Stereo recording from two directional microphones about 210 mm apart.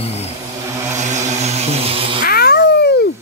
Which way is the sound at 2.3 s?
50° left (ahead or behind).